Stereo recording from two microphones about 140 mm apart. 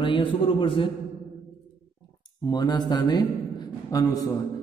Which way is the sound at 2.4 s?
30° left (ahead or behind).